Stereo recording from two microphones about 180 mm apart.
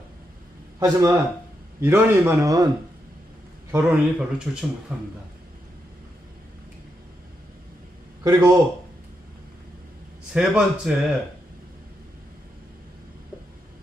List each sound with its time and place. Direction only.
0.7 s speech: 20° right (ahead or behind)
3.7 s speech: 10° right (ahead or behind)
8.2 s speech: 20° right (ahead or behind)
10.3 s a man's voice: 5° right (ahead or behind)